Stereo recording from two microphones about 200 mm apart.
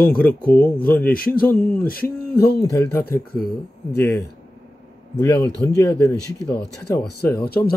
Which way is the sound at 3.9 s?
10° left (ahead or behind).